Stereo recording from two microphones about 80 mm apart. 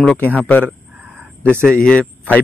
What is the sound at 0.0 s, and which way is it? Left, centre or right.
Speech, centre.